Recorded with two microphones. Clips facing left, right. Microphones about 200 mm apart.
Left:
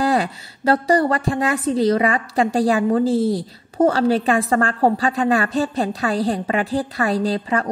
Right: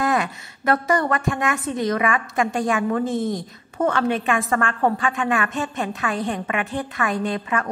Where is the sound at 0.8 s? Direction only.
30° left (ahead or behind).